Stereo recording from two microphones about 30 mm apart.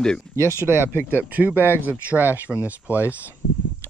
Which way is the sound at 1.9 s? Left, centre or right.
Right.